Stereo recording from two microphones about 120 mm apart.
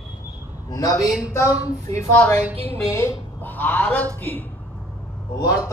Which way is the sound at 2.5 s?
50° right (ahead or behind).